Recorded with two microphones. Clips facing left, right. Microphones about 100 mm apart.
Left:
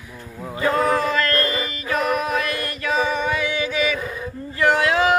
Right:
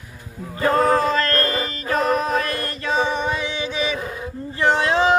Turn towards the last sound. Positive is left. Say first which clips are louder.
# even
turn(degrees=-25)  # may be behind; listen again after turning